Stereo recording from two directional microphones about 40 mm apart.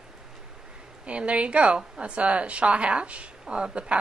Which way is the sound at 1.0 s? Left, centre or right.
Right.